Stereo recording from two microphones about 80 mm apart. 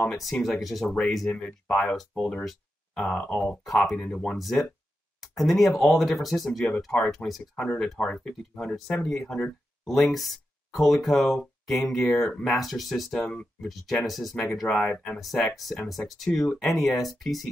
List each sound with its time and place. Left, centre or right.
0.1 s speech: centre
1.3 s speech: centre
1.8 s speech: centre
3.6 s speech: centre
3.9 s speech: centre
4.4 s speech: centre